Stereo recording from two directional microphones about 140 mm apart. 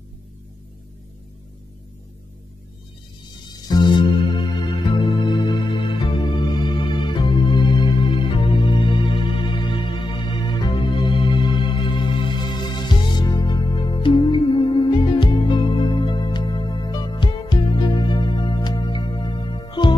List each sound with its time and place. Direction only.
3.4 s music: 30° left (ahead or behind)